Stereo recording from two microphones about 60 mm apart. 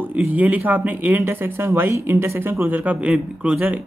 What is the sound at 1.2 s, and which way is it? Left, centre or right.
Speech, right.